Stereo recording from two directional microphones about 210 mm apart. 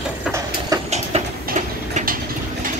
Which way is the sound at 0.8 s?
30° right (ahead or behind).